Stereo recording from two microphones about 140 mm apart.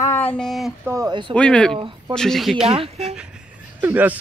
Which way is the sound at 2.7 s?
45° right (ahead or behind).